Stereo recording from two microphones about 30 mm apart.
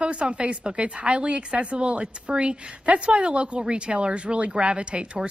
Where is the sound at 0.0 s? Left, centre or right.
Right.